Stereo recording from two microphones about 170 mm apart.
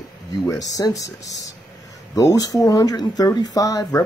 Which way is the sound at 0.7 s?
20° left (ahead or behind).